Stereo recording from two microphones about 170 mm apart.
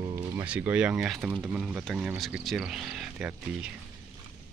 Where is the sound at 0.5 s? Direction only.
10° right (ahead or behind).